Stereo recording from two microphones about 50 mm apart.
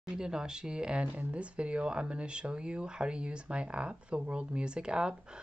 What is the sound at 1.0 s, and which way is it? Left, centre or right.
Speech, right.